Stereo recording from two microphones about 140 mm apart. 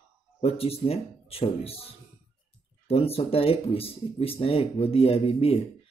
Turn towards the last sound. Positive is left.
turn(degrees=45)  # may be behind; listen again after turning